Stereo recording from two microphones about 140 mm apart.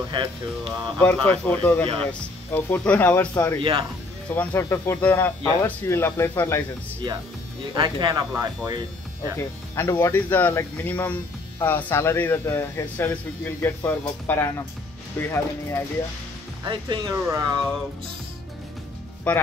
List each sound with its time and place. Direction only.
0.1 s speech: 35° right (ahead or behind)
0.7 s speech: 10° left (ahead or behind)
7.7 s speech: 30° right (ahead or behind)
9.4 s speech: 20° left (ahead or behind)
16.6 s speech: 30° right (ahead or behind)
17.1 s speech: 20° right (ahead or behind)
19.3 s speech: 10° left (ahead or behind)